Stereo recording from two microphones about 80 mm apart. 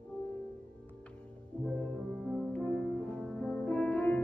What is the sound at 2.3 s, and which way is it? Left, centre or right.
Music, centre.